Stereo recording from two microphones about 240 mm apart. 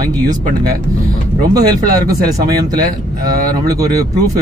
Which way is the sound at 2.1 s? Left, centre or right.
Centre.